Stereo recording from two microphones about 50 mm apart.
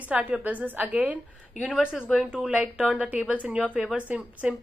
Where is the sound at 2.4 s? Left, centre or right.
Right.